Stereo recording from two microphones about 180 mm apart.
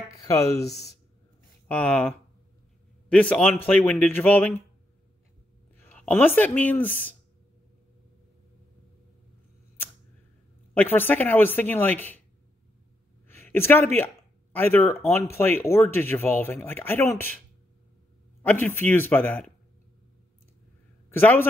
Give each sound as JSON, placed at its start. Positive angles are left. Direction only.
{"t": 0.3, "sound": "speech", "side_deg": 15}
{"t": 1.7, "sound": "speech", "side_deg": 10}
{"t": 3.1, "sound": "speech", "side_deg": 5}
{"t": 5.9, "sound": "speech", "side_deg": 10}
{"t": 10.7, "sound": "speech", "side_deg": 10}
{"t": 13.3, "sound": "a sound", "side_deg": 10}
{"t": 13.9, "sound": "speech", "side_deg": 10}
{"t": 18.4, "sound": "speech", "side_deg": 10}
{"t": 21.1, "sound": "a man's voice", "side_deg": 10}